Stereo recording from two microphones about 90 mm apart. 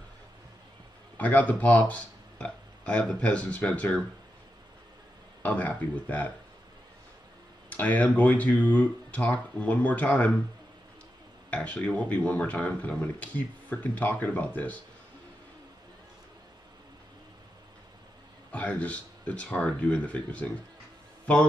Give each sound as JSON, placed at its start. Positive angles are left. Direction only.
{"t": 1.1, "sound": "speech", "side_deg": 20}
{"t": 5.4, "sound": "speech", "side_deg": 20}
{"t": 7.7, "sound": "speech", "side_deg": 20}
{"t": 11.5, "sound": "speech", "side_deg": 15}
{"t": 18.5, "sound": "speech", "side_deg": 15}